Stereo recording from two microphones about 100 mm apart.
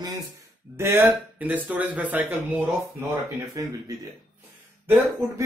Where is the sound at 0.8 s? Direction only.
25° right (ahead or behind).